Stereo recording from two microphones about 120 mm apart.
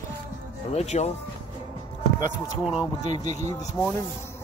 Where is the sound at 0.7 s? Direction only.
65° left (ahead or behind).